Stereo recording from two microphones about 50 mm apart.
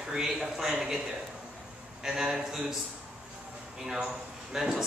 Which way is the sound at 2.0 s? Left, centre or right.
Centre.